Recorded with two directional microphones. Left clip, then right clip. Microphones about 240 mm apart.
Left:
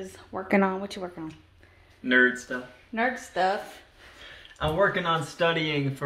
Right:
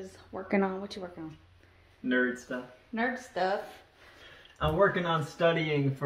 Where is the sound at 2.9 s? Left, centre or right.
Left.